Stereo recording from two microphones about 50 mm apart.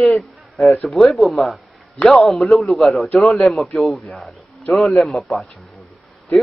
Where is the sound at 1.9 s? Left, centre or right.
Left.